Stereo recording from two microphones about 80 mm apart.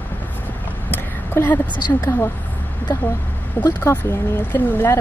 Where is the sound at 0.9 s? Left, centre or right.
Left.